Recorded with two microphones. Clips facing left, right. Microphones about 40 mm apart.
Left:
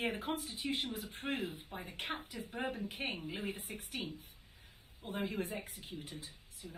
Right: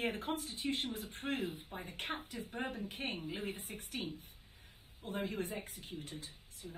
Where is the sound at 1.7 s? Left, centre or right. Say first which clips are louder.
Even; centre.